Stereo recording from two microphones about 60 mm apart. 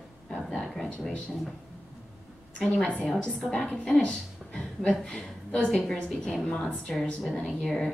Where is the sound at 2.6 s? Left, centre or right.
Centre.